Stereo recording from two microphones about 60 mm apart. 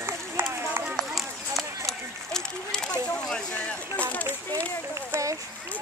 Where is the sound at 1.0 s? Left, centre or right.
Centre.